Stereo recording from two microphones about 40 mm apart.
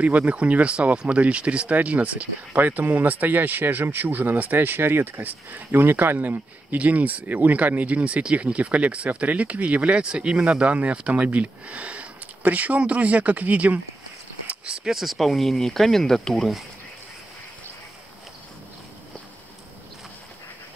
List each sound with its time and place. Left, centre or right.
0.3 s speech: right
2.5 s speech: right
14.5 s a sound: right
14.9 s speech: centre